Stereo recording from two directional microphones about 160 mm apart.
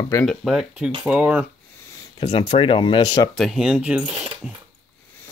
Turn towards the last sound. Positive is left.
turn(degrees=-5)  # may be behind; listen again after turning